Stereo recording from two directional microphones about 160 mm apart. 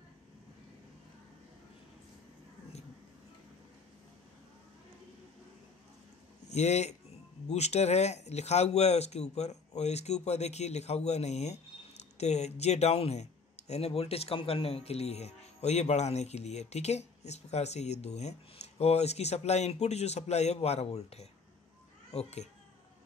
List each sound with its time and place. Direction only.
6.5 s speech: 45° left (ahead or behind)